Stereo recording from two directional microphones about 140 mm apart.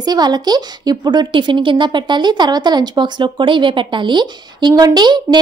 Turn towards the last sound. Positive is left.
turn(degrees=-30)  # may be behind; listen again after turning